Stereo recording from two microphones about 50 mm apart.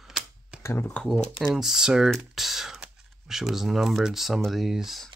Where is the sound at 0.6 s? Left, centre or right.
Left.